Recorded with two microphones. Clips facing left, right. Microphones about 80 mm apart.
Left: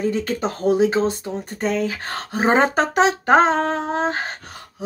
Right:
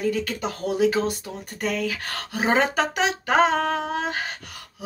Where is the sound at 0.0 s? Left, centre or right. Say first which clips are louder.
Left 3 dB; left.